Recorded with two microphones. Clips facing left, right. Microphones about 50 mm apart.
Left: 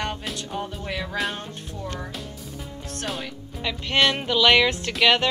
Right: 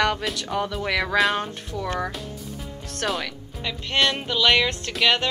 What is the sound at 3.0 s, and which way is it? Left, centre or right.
Speech, right.